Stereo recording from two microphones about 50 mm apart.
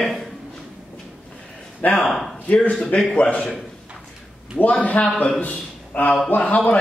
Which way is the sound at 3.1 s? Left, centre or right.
Left.